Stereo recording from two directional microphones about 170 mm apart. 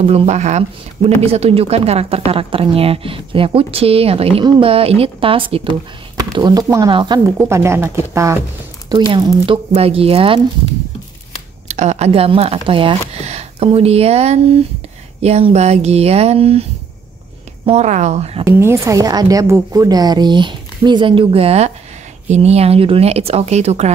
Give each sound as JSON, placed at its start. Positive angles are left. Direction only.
{"t": 0.0, "sound": "a woman's voice", "side_deg": -35}
{"t": 7.4, "sound": "speech", "side_deg": -15}
{"t": 11.6, "sound": "speech", "side_deg": -40}
{"t": 17.6, "sound": "speech", "side_deg": -40}
{"t": 18.4, "sound": "a woman's voice", "side_deg": -15}